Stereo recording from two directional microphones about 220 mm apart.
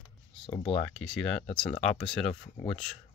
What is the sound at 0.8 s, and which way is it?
Speech, centre (ahead or behind).